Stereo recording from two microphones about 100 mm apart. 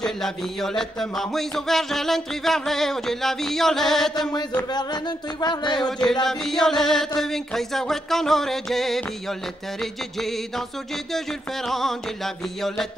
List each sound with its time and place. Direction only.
0.0 s speech: 5° left (ahead or behind)
5.4 s speech: 45° left (ahead or behind)
5.8 s music: 5° left (ahead or behind)
6.2 s speech: 5° left (ahead or behind)